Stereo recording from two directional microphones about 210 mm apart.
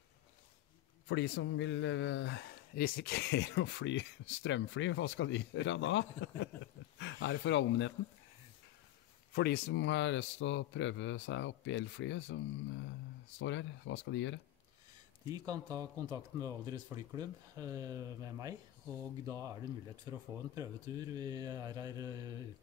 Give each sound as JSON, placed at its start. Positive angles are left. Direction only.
{"t": 1.0, "sound": "a man's voice", "side_deg": 55}
{"t": 9.3, "sound": "a man's voice", "side_deg": 45}
{"t": 13.4, "sound": "a man's voice", "side_deg": 65}
{"t": 15.3, "sound": "speech", "side_deg": -20}